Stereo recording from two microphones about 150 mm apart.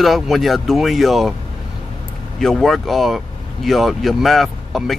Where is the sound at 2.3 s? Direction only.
Centre (ahead or behind).